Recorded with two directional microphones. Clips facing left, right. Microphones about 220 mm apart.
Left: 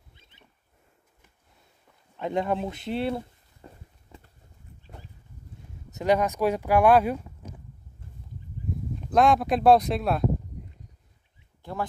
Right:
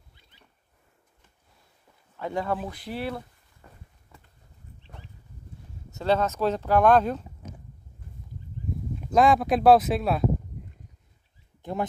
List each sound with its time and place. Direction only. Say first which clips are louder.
0.1 s rodents: left 3 dB; 20° left (ahead or behind)
2.1 s a sound: left 2 dB; 20° left (ahead or behind)
5.9 s speech: left 1 dB; 15° left (ahead or behind)
9.0 s speech: right 1 dB; centre (ahead or behind)
11.6 s speech: right 4 dB; 20° right (ahead or behind)